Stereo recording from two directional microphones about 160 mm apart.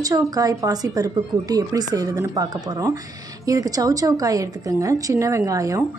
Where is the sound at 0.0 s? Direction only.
20° right (ahead or behind).